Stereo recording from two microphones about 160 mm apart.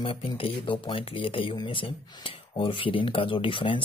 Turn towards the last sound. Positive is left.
turn(degrees=30)  # may be behind; listen again after turning